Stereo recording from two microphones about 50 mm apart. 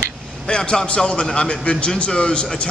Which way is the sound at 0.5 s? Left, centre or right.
Centre.